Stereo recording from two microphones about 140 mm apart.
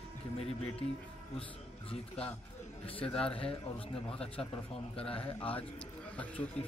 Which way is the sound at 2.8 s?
40° left (ahead or behind).